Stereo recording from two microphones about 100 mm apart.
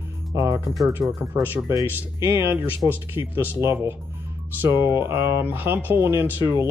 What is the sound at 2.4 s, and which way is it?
Speech, 25° right (ahead or behind).